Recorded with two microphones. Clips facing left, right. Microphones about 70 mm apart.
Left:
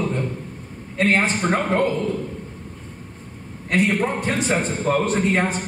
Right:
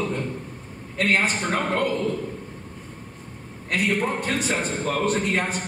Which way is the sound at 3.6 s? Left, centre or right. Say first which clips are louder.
Left 3 dB; left.